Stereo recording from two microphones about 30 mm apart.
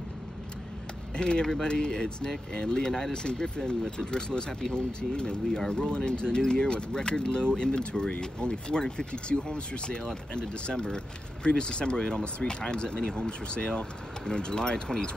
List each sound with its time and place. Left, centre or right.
1.1 s speech: left